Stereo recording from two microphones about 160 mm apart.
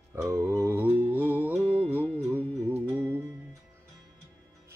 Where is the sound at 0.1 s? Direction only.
15° right (ahead or behind).